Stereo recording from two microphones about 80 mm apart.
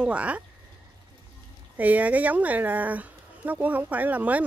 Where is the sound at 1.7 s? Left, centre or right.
Centre.